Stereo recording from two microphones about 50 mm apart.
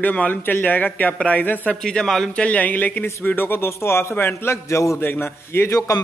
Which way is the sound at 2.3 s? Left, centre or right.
Left.